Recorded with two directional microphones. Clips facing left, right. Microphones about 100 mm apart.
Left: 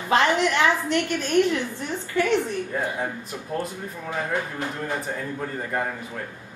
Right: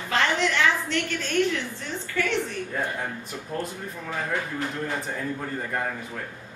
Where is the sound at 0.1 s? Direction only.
15° left (ahead or behind).